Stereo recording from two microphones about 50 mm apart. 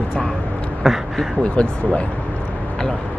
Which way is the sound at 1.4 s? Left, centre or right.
Left.